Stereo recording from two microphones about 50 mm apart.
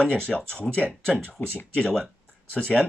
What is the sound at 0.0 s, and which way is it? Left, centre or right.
Speech, left.